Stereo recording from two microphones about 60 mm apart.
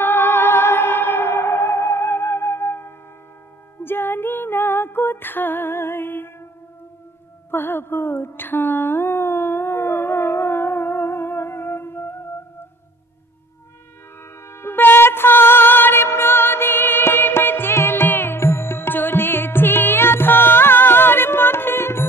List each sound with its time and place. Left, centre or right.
0.0 s music: left
7.5 s a sound: left
14.2 s music: left